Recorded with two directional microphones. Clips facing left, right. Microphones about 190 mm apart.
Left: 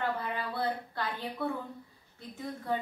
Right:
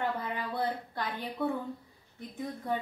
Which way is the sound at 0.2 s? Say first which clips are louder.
Even; 20° right (ahead or behind).